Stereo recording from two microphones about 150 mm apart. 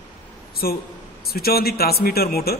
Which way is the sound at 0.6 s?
90° left.